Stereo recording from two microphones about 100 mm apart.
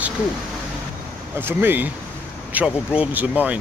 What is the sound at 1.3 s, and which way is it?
Speech, 20° right (ahead or behind).